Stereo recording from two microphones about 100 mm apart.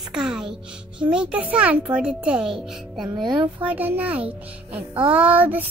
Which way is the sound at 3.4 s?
15° right (ahead or behind).